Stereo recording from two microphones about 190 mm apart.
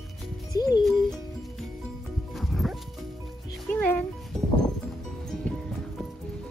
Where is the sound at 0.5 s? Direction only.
20° left (ahead or behind).